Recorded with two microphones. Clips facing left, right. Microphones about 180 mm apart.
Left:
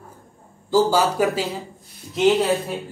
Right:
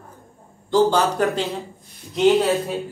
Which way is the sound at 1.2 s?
5° left (ahead or behind).